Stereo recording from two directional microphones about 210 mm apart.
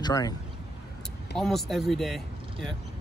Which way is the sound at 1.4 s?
Centre (ahead or behind).